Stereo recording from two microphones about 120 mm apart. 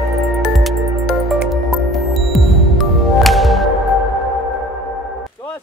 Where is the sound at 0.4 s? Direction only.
Centre (ahead or behind).